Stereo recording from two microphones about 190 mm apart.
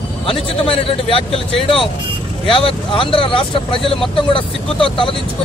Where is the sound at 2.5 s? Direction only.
30° left (ahead or behind).